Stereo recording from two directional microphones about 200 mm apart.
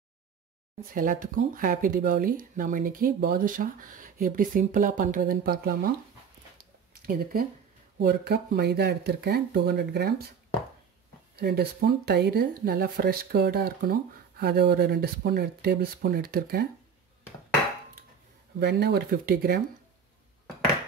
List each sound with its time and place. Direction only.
0.9 s speech: 40° right (ahead or behind)
7.0 s speech: 50° right (ahead or behind)
11.3 s speech: 50° right (ahead or behind)
18.6 s speech: 55° right (ahead or behind)